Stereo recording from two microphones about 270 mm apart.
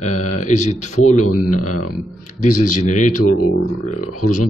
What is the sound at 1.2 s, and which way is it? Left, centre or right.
Speech, left.